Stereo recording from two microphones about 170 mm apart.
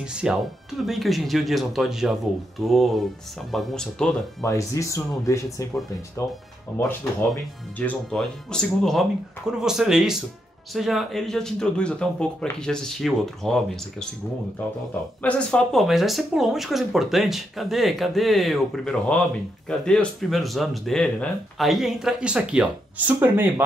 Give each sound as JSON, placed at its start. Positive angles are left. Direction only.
{"t": 0.0, "sound": "speech", "side_deg": -5}
{"t": 4.4, "sound": "speech", "side_deg": 20}
{"t": 7.8, "sound": "speech", "side_deg": 5}
{"t": 15.2, "sound": "speech", "side_deg": 5}